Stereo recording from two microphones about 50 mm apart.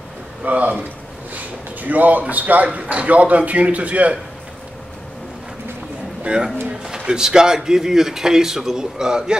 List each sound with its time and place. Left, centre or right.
0.4 s a man's voice: right
6.2 s a man's voice: centre